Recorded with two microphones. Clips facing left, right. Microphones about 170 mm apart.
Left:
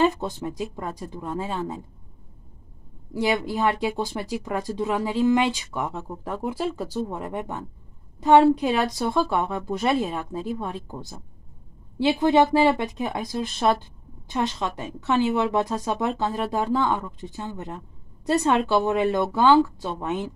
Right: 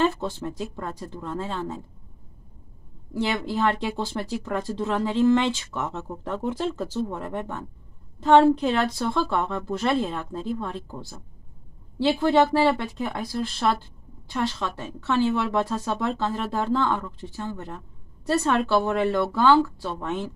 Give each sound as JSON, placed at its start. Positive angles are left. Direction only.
{"t": 0.0, "sound": "speech", "side_deg": 15}
{"t": 3.1, "sound": "speech", "side_deg": 10}